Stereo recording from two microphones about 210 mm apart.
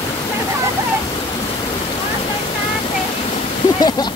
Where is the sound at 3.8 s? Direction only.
20° left (ahead or behind).